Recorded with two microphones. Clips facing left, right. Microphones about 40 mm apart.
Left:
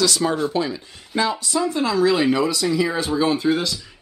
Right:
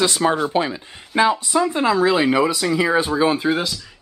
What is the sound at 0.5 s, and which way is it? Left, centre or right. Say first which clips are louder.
Speech: right 3 dB; right.